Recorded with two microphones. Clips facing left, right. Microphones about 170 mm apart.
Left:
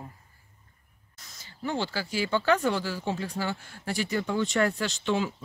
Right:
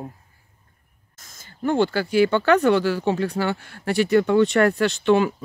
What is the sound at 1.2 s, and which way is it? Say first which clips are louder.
Speech: right 9 dB; 50° right (ahead or behind).